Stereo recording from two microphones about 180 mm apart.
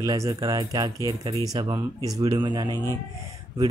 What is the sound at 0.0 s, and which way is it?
A man's voice, 20° right (ahead or behind).